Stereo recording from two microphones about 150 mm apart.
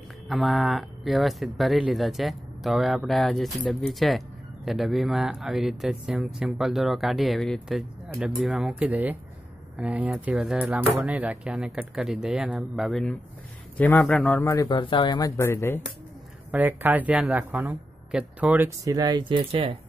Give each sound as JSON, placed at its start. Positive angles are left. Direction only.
{"t": 0.3, "sound": "a man's voice", "side_deg": 0}
{"t": 14.7, "sound": "speech", "side_deg": 35}
{"t": 16.5, "sound": "speech", "side_deg": -10}
{"t": 18.9, "sound": "speech", "side_deg": -25}